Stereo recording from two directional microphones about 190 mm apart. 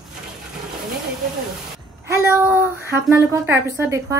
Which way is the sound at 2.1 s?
10° right (ahead or behind).